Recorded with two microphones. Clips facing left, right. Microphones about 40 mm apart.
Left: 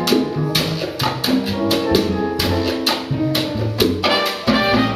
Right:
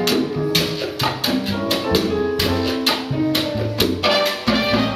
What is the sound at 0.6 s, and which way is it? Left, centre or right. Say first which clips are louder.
Music: even; centre.